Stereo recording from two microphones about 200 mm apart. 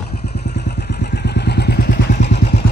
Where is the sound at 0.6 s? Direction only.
50° left (ahead or behind).